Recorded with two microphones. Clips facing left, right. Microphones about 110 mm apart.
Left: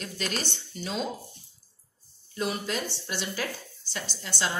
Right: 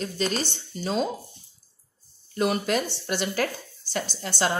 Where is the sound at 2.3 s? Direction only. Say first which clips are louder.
Right 6 dB; 65° right (ahead or behind).